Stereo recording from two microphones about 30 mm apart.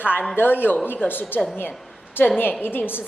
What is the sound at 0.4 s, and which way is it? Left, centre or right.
Speech, left.